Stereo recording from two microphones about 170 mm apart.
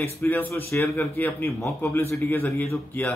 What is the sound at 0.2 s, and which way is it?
A man's voice, 15° left (ahead or behind).